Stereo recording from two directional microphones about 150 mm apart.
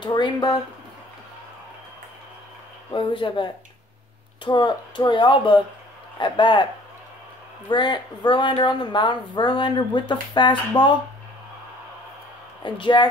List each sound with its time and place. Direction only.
0.0 s speech: 30° left (ahead or behind)
2.9 s speech: 35° left (ahead or behind)
4.5 s speech: 30° left (ahead or behind)
7.7 s speech: 30° left (ahead or behind)
12.6 s speech: 35° left (ahead or behind)